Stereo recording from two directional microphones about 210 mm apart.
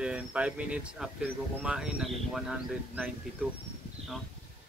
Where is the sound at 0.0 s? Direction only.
5° right (ahead or behind).